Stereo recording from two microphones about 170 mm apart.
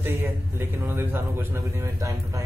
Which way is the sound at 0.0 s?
10° right (ahead or behind).